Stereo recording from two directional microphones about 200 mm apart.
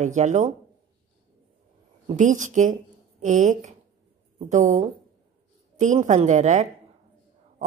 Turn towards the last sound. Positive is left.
turn(degrees=-35)  # may be behind; listen again after turning